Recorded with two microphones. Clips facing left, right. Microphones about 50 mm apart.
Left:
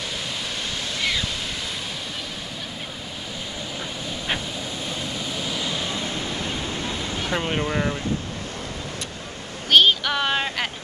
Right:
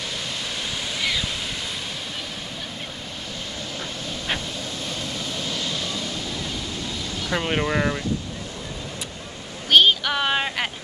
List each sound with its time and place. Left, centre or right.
0.9 s waterfall: centre
5.3 s pink noise: centre; by 7.3 s left
7.4 s speech: centre
9.7 s a sound: centre